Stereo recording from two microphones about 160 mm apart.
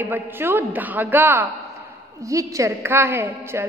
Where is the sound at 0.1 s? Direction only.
15° right (ahead or behind).